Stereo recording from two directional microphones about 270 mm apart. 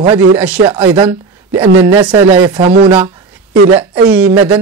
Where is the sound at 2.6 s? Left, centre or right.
Right.